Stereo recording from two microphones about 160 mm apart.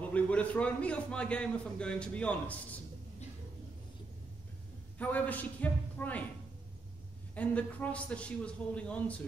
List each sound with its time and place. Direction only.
0.1 s a man's voice: 10° left (ahead or behind)
4.9 s a man's voice: 10° left (ahead or behind)
7.3 s a man's voice: 10° left (ahead or behind)